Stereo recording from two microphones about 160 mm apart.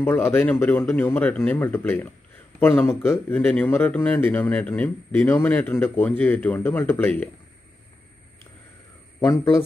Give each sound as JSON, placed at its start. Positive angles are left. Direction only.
{"t": 0.0, "sound": "a man's voice", "side_deg": 15}
{"t": 9.2, "sound": "a man's voice", "side_deg": 15}